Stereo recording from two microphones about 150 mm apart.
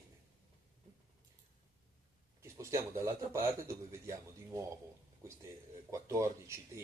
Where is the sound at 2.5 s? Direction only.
20° right (ahead or behind).